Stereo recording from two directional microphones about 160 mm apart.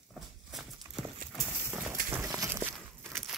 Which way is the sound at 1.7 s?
15° right (ahead or behind).